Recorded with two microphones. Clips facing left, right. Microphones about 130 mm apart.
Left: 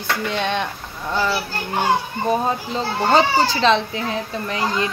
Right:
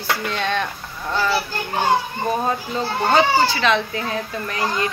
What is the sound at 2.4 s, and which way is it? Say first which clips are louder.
Speech: even; 30° left (ahead or behind).